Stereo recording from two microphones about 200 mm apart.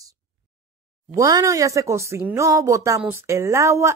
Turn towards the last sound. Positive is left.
turn(degrees=-15)  # may be behind; listen again after turning